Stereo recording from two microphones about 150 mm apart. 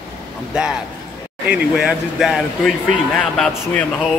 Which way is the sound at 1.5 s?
5° right (ahead or behind).